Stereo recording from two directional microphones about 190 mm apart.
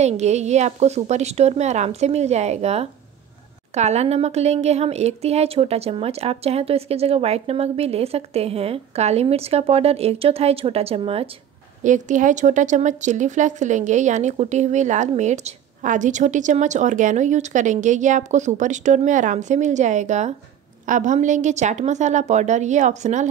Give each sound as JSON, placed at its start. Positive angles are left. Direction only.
{"t": 0.0, "sound": "speech", "side_deg": -35}